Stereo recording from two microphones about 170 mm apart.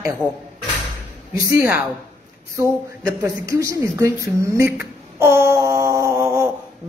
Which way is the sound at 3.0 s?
20° right (ahead or behind).